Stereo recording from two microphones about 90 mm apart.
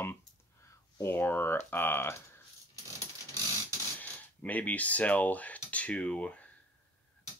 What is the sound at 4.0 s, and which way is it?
Speech, 20° left (ahead or behind).